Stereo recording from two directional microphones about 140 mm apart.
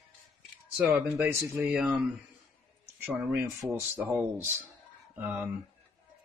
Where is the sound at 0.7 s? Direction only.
10° right (ahead or behind).